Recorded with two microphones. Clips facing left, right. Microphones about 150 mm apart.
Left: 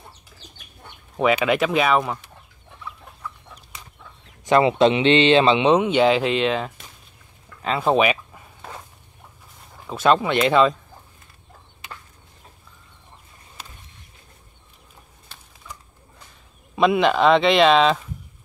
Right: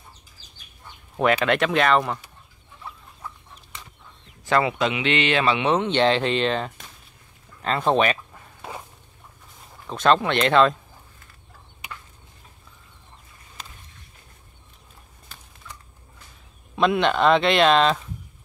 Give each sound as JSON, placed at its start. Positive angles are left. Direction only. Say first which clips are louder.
{"t": 0.4, "sound": "chicken", "louder": "left 3 dB", "side_deg": 65}
{"t": 1.3, "sound": "speech", "louder": "left 1 dB", "side_deg": 5}
{"t": 4.5, "sound": "speech", "louder": "left 6 dB", "side_deg": 20}
{"t": 9.8, "sound": "speech", "louder": "left 1 dB", "side_deg": 10}
{"t": 16.7, "sound": "speech", "louder": "left 3 dB", "side_deg": 0}